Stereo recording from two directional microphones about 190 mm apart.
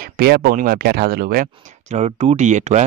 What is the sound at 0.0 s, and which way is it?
Speech, 55° right (ahead or behind).